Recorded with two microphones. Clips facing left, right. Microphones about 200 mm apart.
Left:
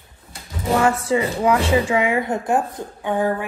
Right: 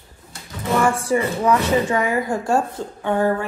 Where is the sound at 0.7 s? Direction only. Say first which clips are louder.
Left 1 dB; 25° left (ahead or behind).